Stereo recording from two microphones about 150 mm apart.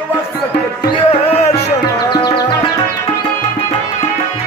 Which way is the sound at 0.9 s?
40° left (ahead or behind).